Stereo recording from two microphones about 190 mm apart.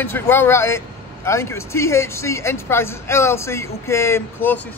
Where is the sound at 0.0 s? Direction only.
10° left (ahead or behind).